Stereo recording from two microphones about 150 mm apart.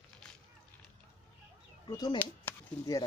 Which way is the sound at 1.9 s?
25° left (ahead or behind).